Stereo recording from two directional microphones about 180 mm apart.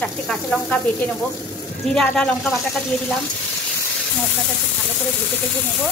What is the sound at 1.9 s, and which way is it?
Speech, 5° left (ahead or behind).